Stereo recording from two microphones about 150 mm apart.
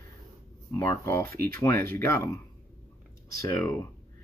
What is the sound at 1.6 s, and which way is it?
Speech, 15° left (ahead or behind).